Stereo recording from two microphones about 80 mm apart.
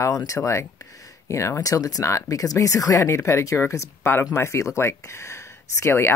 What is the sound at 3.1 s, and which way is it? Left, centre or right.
Speech, left.